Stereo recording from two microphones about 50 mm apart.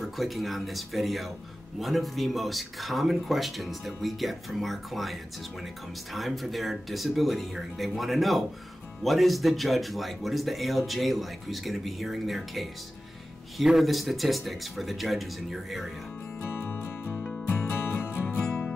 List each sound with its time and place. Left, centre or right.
0.0 s a man's voice: centre
16.4 s music: left